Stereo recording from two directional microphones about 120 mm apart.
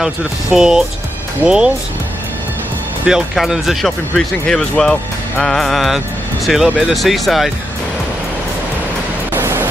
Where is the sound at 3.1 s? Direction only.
5° right (ahead or behind).